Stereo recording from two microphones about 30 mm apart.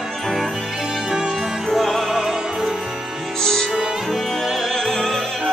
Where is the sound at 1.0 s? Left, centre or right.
Centre.